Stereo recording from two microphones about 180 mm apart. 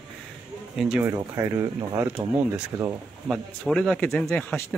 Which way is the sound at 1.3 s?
15° right (ahead or behind).